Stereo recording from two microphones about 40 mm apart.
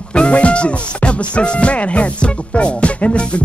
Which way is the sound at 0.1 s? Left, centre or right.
Left.